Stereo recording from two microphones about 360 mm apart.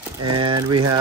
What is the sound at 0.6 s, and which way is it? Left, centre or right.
Mantra, right.